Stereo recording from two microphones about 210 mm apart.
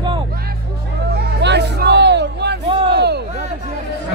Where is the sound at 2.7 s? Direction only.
25° right (ahead or behind).